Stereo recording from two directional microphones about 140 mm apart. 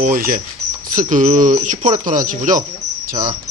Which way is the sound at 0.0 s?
75° right (ahead or behind).